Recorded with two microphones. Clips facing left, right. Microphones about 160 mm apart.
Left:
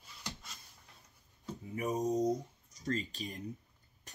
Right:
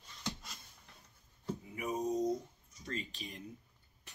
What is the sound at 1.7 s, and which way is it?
Speech, 40° left (ahead or behind).